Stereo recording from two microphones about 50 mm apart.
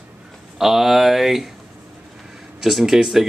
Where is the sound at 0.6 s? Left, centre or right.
Centre.